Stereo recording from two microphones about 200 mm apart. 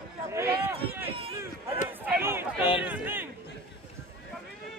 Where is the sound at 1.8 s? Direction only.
10° right (ahead or behind).